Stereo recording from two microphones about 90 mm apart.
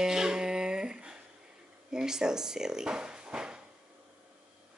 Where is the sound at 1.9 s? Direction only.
5° right (ahead or behind).